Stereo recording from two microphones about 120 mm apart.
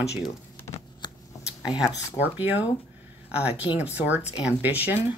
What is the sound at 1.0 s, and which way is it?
Shuffling cards, 40° left (ahead or behind).